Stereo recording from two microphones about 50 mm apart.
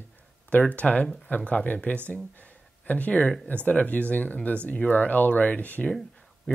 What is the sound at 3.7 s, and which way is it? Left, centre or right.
Speech, left.